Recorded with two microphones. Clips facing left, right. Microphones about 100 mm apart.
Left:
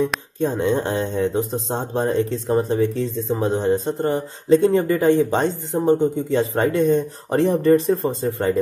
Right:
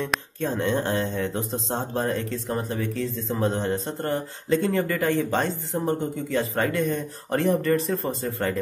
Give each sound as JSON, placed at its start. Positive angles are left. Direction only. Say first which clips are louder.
{"t": 0.4, "sound": "speech", "louder": "left 6 dB", "side_deg": 15}